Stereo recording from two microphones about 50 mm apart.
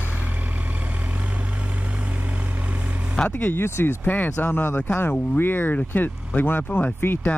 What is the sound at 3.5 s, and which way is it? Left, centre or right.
Speech, left.